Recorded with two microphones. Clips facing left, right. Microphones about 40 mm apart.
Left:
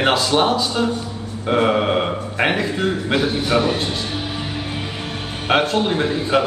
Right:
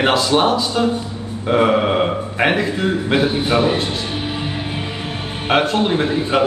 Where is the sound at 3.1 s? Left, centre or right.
Right.